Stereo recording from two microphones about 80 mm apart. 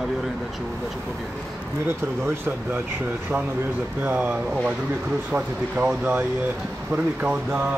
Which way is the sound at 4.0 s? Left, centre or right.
Centre.